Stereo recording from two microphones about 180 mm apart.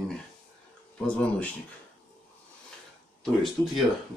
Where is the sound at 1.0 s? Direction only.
5° left (ahead or behind).